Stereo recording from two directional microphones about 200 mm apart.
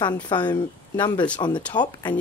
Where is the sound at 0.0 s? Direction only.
20° left (ahead or behind).